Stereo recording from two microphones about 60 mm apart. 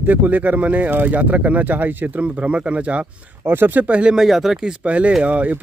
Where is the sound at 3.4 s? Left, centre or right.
Right; by 4.2 s centre.